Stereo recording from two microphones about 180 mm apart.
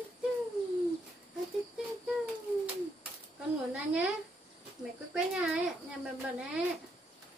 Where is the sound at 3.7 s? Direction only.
5° right (ahead or behind).